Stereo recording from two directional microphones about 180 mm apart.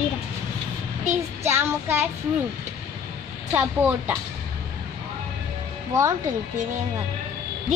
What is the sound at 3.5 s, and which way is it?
Speech, 10° right (ahead or behind).